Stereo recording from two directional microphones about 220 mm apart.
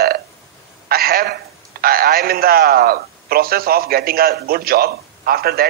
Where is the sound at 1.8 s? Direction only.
45° right (ahead or behind).